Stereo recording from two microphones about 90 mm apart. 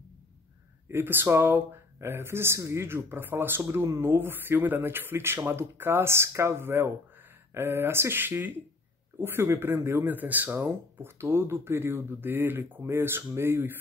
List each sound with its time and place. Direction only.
0.8 s speech: 25° right (ahead or behind)